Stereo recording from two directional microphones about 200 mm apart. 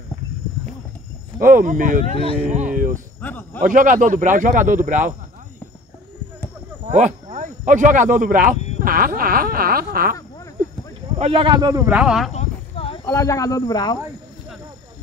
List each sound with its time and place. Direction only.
1.4 s speech: 40° right (ahead or behind)
2.4 s a sound: 40° right (ahead or behind)
3.2 s a man's voice: 10° left (ahead or behind)
3.5 s speech: 40° right (ahead or behind)
6.9 s speech: 35° right (ahead or behind)
11.1 s speech: 30° right (ahead or behind)
12.0 s speech: 5° right (ahead or behind)
12.3 s a sound: 30° left (ahead or behind)
13.0 s speech: 15° left (ahead or behind)